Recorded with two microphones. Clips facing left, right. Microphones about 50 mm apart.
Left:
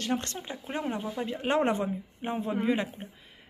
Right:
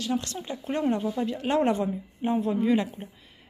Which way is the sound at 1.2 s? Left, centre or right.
Left.